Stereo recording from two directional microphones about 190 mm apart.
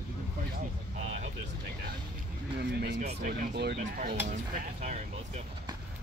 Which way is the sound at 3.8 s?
45° right (ahead or behind).